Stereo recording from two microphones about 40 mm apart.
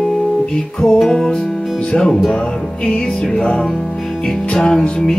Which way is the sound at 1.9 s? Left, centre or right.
Centre.